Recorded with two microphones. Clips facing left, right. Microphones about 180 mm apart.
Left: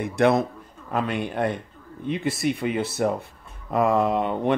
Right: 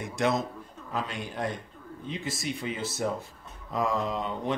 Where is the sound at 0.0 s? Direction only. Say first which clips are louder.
Left 8 dB; 60° left (ahead or behind).